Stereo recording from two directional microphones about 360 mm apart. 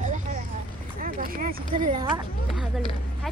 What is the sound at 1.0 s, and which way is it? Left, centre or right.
Speech, right.